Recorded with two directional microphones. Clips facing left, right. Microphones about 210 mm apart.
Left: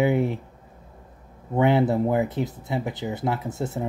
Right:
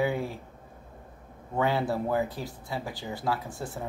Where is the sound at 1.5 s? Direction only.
20° left (ahead or behind).